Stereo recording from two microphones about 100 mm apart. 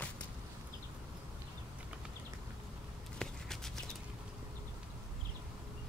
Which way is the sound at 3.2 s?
5° left (ahead or behind).